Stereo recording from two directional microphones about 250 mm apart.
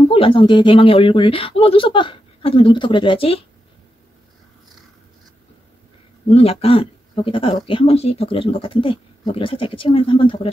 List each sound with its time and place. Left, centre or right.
0.1 s speech: left
6.2 s speech: left